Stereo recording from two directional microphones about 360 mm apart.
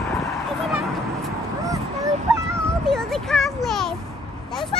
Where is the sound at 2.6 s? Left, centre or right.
Centre.